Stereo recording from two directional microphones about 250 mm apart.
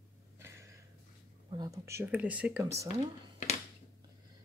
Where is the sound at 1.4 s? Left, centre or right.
Centre.